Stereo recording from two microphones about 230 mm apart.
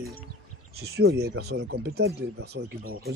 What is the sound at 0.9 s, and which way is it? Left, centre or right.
Speech, right.